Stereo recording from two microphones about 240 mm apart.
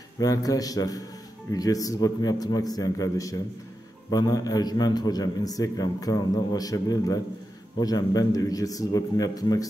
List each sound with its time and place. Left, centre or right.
0.2 s a man's voice: centre